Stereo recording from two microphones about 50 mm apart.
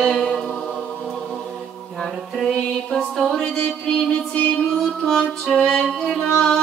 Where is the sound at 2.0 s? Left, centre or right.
Centre.